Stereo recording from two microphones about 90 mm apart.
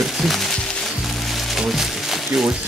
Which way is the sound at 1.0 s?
Centre (ahead or behind).